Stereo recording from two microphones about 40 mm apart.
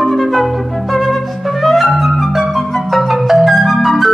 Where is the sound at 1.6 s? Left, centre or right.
Centre.